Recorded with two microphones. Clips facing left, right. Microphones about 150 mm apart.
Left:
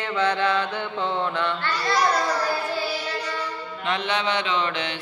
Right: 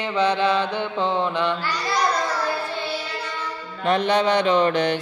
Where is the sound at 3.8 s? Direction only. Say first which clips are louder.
Right 7 dB; 40° right (ahead or behind).